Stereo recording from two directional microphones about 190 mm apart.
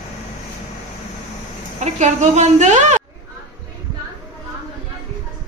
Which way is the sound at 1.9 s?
35° right (ahead or behind).